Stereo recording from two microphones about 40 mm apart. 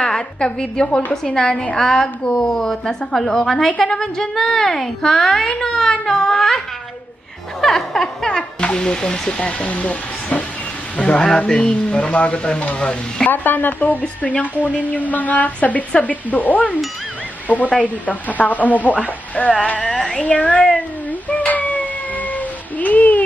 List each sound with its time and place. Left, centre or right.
0.0 s a woman's voice: left
7.6 s a woman's voice: centre
8.3 s speech: left
11.0 s speech: left
13.3 s speech: left
14.0 s a woman's voice: left
17.7 s a woman's voice: left
21.3 s a sound: left
22.3 s child singing: left